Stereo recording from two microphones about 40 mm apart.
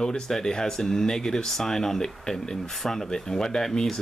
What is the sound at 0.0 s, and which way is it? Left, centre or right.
Speech, centre.